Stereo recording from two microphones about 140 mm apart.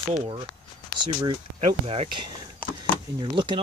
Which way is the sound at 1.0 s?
35° right (ahead or behind).